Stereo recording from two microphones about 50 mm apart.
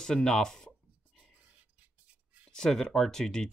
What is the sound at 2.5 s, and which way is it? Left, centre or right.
Speech, centre.